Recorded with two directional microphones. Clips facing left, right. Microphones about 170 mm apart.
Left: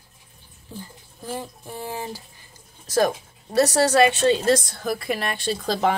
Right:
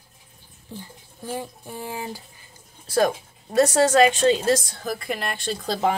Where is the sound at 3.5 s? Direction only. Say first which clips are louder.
Right 1 dB; 35° left (ahead or behind).